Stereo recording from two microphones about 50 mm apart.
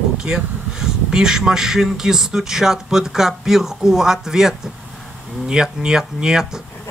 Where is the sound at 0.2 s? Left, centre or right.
Centre.